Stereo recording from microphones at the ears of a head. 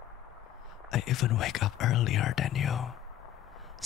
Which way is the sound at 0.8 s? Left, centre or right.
Left.